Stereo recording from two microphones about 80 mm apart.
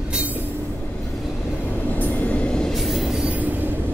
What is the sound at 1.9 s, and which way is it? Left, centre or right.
Train, left.